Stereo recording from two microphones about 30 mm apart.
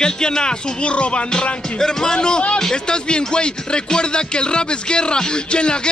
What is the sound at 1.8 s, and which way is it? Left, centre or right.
Speech, left.